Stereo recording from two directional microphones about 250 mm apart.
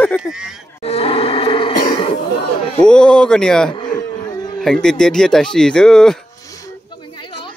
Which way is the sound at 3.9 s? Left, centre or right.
Centre.